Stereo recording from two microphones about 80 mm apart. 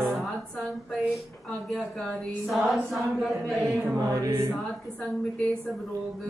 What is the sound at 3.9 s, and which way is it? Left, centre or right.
Music, right.